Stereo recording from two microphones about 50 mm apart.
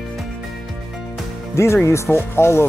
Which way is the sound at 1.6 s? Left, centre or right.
Left.